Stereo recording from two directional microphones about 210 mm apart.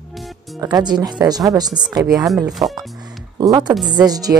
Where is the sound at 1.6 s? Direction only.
5° right (ahead or behind).